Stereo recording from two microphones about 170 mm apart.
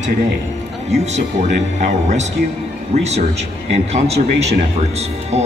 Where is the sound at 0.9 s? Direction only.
40° right (ahead or behind).